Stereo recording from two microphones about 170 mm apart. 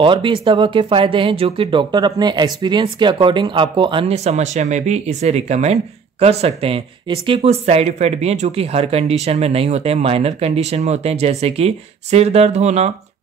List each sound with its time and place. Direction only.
0.0 s speech: 30° right (ahead or behind)